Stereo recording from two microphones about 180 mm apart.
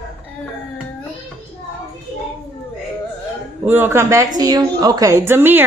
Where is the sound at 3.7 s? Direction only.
10° right (ahead or behind).